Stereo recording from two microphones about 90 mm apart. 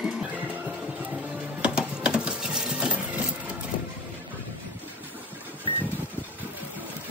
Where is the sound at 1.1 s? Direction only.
10° right (ahead or behind).